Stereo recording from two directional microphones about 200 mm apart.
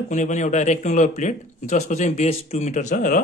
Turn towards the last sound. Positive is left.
turn(degrees=40)  # may be behind; listen again after turning